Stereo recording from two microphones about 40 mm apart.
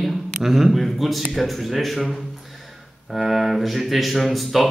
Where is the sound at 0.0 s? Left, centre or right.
Centre.